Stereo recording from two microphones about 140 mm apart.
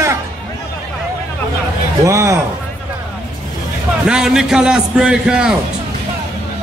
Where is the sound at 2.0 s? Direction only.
20° right (ahead or behind).